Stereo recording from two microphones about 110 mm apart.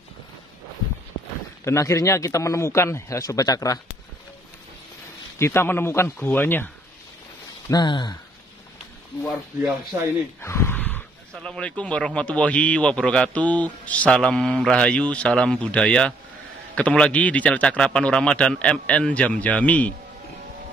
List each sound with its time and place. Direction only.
1.6 s speech: 25° left (ahead or behind)
5.4 s speech: 20° left (ahead or behind)
7.7 s speech: 45° left (ahead or behind)
10.4 s speech: 25° left (ahead or behind)